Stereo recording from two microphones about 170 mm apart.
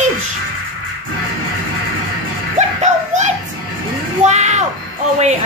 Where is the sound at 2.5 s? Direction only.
45° right (ahead or behind).